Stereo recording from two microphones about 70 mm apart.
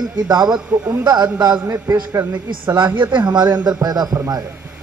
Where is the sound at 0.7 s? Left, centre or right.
Right.